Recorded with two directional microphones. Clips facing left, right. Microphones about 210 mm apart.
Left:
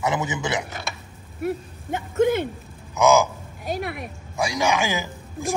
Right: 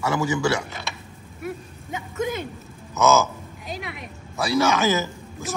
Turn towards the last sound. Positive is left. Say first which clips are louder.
# left 3 dB
turn(degrees=15)  # may be behind; listen again after turning